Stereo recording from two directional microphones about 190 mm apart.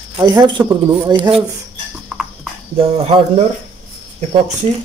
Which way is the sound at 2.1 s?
5° right (ahead or behind).